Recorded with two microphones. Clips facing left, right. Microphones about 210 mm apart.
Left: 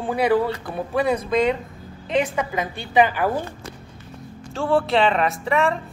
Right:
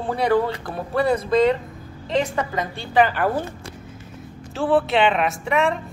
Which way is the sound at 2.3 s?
10° left (ahead or behind).